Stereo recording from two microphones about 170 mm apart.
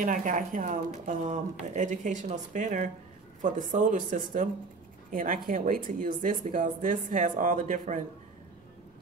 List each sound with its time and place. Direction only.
0.0 s speech: 50° right (ahead or behind)